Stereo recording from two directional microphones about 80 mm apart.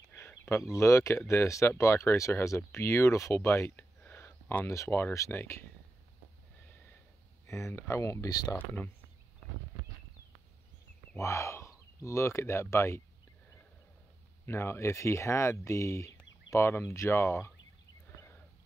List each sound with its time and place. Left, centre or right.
0.2 s a sound: left
0.5 s speech: left
7.4 s speech: left
8.5 s speech: left
11.1 s speech: left
14.4 s speech: left